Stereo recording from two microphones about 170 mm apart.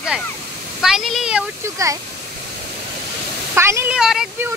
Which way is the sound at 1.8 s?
20° right (ahead or behind).